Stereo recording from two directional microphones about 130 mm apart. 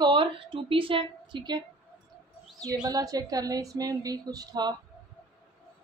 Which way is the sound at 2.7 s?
30° right (ahead or behind).